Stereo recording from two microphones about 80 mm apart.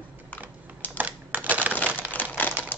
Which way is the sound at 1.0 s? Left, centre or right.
Right.